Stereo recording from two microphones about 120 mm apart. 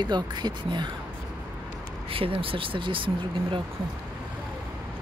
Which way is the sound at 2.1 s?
50° right (ahead or behind).